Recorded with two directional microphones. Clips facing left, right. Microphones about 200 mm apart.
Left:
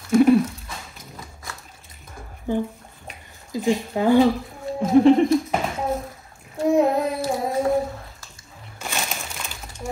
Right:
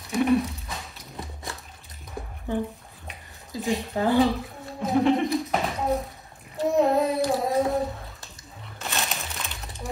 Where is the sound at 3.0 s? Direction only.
Centre (ahead or behind).